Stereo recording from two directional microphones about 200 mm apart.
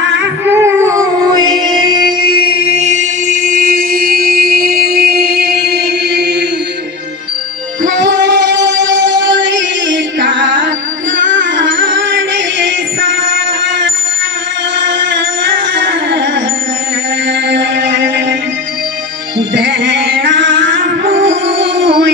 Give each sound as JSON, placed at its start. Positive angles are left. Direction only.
{"t": 0.5, "sound": "music", "side_deg": -10}
{"t": 2.3, "sound": "a sound", "side_deg": -30}
{"t": 7.8, "sound": "music", "side_deg": -60}
{"t": 15.7, "sound": "music", "side_deg": -65}
{"t": 19.3, "sound": "music", "side_deg": -65}